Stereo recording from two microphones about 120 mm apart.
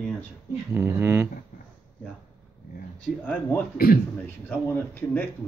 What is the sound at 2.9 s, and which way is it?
Speech, 15° left (ahead or behind).